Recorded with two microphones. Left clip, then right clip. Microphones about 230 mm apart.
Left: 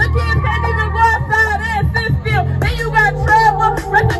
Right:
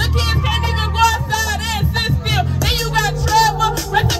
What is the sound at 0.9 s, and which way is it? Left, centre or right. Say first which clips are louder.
Music: left 3 dB; right.